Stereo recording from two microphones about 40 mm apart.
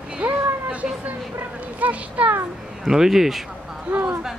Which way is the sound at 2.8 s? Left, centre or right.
Centre.